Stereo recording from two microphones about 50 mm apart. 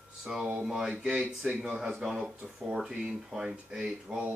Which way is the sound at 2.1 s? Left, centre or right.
Centre.